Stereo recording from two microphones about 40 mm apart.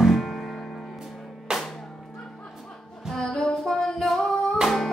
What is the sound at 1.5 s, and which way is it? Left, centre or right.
Music, centre.